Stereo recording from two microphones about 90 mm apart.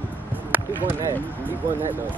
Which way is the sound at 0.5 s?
20° right (ahead or behind).